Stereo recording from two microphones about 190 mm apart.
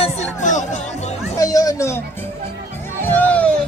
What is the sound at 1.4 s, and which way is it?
Music, 20° left (ahead or behind).